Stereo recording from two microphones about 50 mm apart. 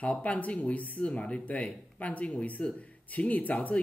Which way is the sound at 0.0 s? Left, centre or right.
Left.